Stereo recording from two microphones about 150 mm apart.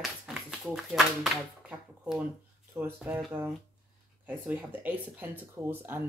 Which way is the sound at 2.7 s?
20° right (ahead or behind).